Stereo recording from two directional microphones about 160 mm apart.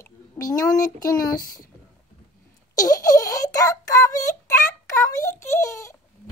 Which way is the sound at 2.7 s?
20° left (ahead or behind).